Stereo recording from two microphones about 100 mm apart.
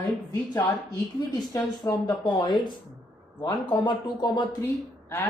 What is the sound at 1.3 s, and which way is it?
Speech, 35° left (ahead or behind).